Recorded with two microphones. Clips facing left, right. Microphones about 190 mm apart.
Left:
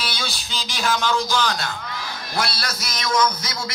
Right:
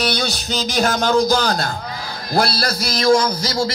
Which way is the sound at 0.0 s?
45° right (ahead or behind).